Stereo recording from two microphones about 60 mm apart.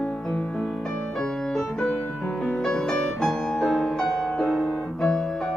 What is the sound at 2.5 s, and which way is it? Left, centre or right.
Music, centre.